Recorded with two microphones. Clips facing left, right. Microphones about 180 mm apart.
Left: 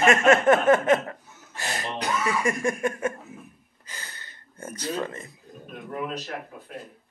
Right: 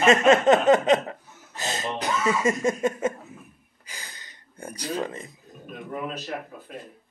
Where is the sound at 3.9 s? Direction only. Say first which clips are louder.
Left 1 dB; 15° right (ahead or behind).